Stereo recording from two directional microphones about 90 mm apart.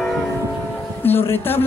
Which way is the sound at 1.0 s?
25° left (ahead or behind).